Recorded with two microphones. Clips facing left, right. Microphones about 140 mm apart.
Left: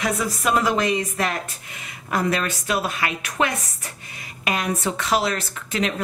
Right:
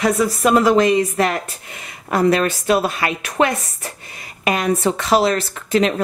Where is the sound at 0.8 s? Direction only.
30° right (ahead or behind).